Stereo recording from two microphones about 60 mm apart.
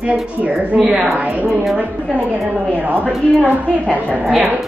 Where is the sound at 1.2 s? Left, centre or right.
Right.